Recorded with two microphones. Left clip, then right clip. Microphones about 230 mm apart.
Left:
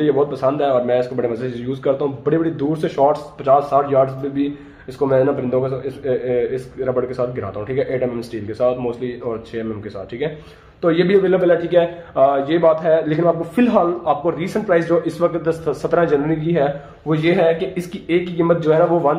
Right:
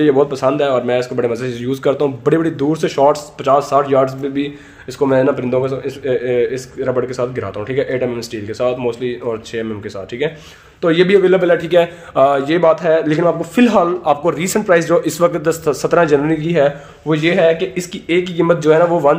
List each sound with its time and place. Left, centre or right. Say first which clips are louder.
0.0 s a man's voice: right 4 dB; right
10.8 s a man's voice: right 4 dB; right